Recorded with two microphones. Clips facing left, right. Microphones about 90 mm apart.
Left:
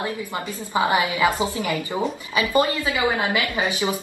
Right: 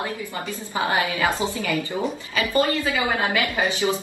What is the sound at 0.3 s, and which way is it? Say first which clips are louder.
A woman's voice: left 3 dB; 20° left (ahead or behind).